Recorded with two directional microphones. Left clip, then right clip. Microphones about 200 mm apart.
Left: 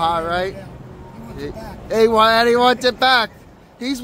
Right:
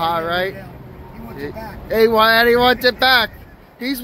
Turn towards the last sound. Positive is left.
turn(degrees=5)  # may be behind; listen again after turning